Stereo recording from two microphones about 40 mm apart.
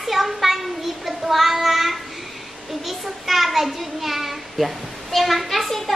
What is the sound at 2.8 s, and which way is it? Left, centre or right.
A woman's voice, centre.